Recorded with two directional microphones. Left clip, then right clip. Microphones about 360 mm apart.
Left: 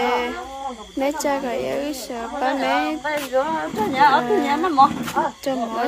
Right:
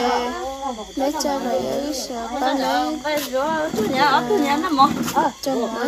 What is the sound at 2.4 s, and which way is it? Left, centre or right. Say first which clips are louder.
Speech: even; centre.